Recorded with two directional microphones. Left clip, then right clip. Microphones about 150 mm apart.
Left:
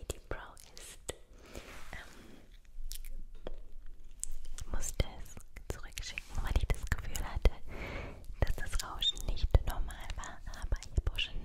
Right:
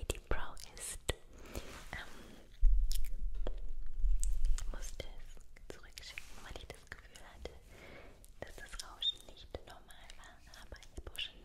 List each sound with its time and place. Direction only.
0.0 s whispering: 10° right (ahead or behind)
0.7 s whispering: 20° right (ahead or behind)
1.9 s whispering: centre (ahead or behind)
2.9 s biting: centre (ahead or behind)
3.5 s a sound: centre (ahead or behind)
4.2 s whispering: 5° left (ahead or behind)
4.6 s whispering: 20° left (ahead or behind)